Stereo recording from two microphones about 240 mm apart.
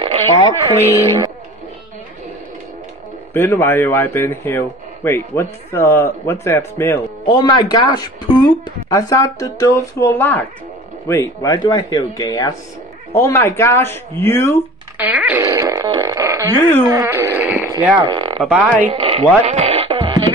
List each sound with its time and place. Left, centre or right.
0.0 s radio: centre
0.7 s speech: centre
3.3 s speech: centre
15.0 s speech: centre
16.5 s speech: centre
16.9 s a sound: centre
18.4 s speech: centre
18.9 s speech: right